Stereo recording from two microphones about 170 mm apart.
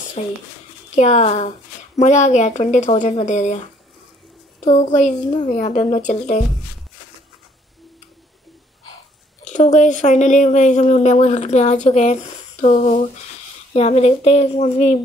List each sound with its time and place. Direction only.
0.2 s a woman's voice: 40° left (ahead or behind)
4.6 s speech: 45° left (ahead or behind)
9.4 s a woman's voice: 45° left (ahead or behind)